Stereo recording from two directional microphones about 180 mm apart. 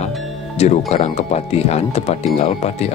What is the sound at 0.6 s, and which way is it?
Speech, 40° left (ahead or behind).